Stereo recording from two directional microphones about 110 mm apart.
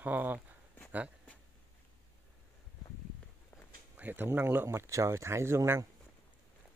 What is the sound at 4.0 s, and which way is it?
Speech, 15° right (ahead or behind).